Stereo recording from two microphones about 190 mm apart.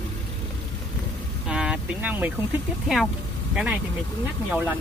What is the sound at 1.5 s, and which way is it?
Vehicle, 5° right (ahead or behind).